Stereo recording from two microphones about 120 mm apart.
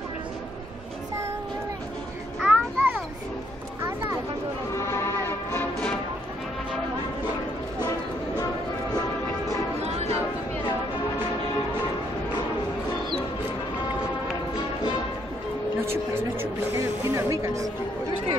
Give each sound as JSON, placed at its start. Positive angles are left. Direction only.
{"t": 2.4, "sound": "children playing", "side_deg": -15}
{"t": 4.7, "sound": "music", "side_deg": 20}
{"t": 9.8, "sound": "music", "side_deg": -60}
{"t": 15.8, "sound": "a sound", "side_deg": -20}
{"t": 17.0, "sound": "music", "side_deg": -20}